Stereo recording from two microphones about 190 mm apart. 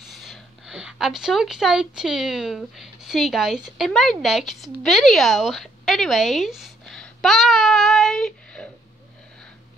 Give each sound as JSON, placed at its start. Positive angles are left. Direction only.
{"t": 0.1, "sound": "a woman's voice", "side_deg": 0}